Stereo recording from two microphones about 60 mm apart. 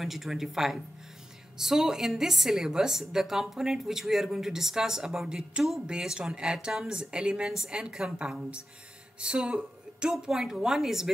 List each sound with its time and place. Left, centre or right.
0.0 s a woman's voice: centre